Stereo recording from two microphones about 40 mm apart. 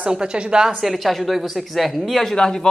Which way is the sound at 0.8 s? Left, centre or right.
Centre.